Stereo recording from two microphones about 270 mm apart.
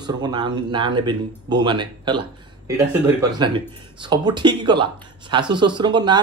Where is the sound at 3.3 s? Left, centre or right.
Centre.